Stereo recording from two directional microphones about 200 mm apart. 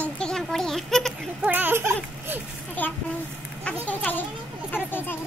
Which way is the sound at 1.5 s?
10° right (ahead or behind).